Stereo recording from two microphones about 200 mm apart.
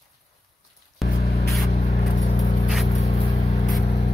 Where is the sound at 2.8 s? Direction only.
35° left (ahead or behind).